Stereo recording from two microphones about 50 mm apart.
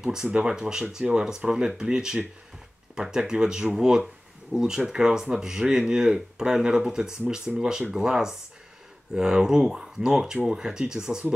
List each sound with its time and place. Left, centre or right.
0.0 s speech: centre